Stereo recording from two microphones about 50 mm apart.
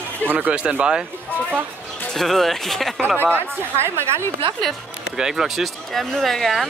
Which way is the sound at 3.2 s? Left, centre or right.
Right.